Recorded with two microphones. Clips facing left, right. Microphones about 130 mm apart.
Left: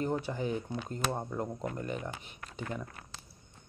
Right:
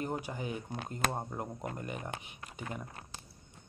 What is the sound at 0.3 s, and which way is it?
Speech, 25° right (ahead or behind).